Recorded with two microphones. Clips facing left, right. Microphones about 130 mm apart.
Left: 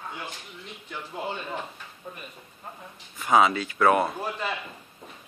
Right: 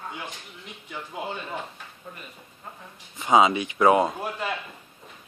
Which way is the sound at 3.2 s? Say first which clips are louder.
Right 2 dB; 20° right (ahead or behind).